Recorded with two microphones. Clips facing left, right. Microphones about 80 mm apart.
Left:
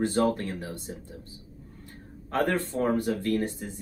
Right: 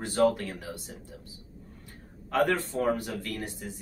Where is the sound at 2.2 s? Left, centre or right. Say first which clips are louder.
Right 1 dB; left.